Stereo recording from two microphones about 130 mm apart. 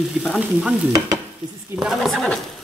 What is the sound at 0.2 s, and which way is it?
Stir, 5° right (ahead or behind).